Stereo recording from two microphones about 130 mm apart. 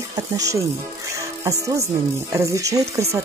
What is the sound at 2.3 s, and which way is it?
Speech, 25° right (ahead or behind).